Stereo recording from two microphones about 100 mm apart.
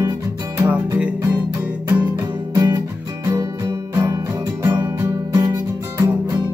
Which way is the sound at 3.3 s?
25° right (ahead or behind).